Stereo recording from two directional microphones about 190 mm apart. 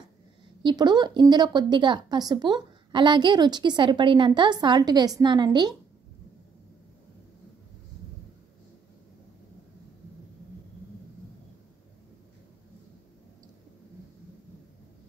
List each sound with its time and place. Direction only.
0.6 s a woman's voice: 25° right (ahead or behind)